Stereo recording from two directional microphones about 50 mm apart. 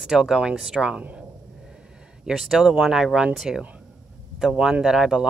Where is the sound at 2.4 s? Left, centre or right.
Centre.